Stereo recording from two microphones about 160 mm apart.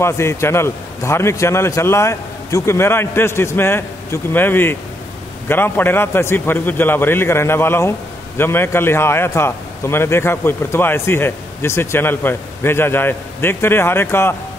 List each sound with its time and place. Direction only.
0.0 s a man's voice: 15° left (ahead or behind)